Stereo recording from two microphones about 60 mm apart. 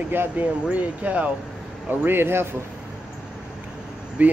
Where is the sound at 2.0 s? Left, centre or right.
Right.